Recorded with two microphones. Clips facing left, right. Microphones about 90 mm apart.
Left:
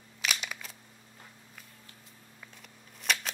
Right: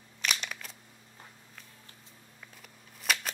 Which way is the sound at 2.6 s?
Centre (ahead or behind).